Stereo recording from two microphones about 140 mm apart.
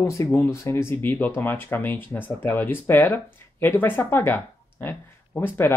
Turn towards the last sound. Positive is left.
turn(degrees=15)  # may be behind; listen again after turning